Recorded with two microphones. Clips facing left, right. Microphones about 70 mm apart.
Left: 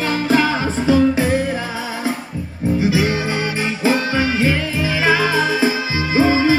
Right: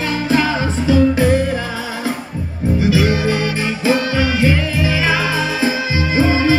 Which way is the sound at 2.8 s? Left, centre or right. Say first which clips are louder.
Right 3 dB; left.